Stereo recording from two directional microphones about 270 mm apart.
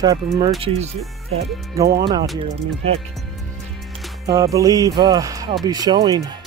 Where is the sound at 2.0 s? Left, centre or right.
Centre.